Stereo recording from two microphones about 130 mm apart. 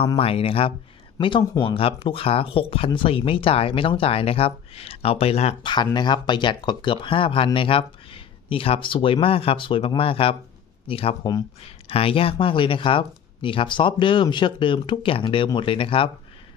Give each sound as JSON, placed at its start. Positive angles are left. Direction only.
{"t": 0.2, "sound": "speech", "side_deg": 45}
{"t": 5.6, "sound": "speech", "side_deg": 35}